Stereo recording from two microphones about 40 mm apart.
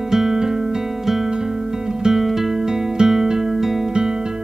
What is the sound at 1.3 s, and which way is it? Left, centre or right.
Guitar, centre.